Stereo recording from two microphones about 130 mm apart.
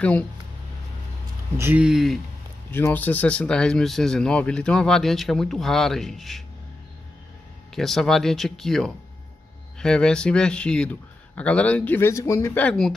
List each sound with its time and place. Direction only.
1.6 s speech: 15° right (ahead or behind)
1.9 s speech: centre (ahead or behind)
2.7 s speech: 15° left (ahead or behind)
7.7 s speech: centre (ahead or behind)